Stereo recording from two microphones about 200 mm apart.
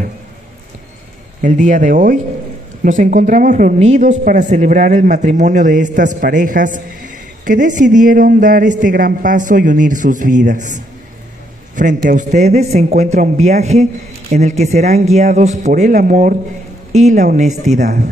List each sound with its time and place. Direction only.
1.4 s a man's voice: 40° right (ahead or behind)